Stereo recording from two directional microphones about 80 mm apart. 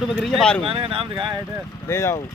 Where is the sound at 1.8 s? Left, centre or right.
Left.